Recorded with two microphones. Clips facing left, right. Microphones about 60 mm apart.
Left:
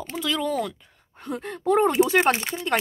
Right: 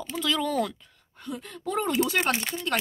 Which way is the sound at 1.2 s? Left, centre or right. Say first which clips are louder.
Left 6 dB; left.